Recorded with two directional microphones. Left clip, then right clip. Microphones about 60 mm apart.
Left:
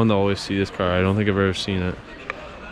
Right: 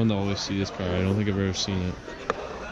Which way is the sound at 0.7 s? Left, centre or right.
Right.